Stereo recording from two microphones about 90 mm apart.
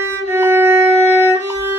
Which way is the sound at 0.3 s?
25° right (ahead or behind).